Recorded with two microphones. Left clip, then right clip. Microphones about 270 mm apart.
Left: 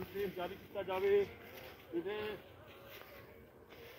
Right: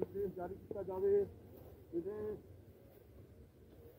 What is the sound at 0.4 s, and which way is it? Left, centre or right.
Speech, centre.